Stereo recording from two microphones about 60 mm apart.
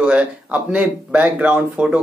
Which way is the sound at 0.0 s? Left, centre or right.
Right.